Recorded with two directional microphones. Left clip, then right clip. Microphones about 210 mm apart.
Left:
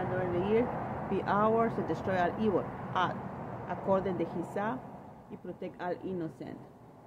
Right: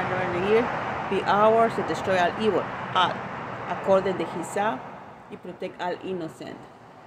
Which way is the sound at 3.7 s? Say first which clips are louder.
Right 9 dB; 10° right (ahead or behind).